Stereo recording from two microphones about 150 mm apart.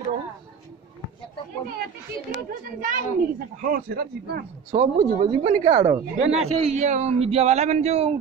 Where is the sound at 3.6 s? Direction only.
80° right.